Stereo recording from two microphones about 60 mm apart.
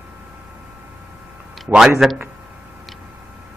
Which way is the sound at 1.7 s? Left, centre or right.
Centre.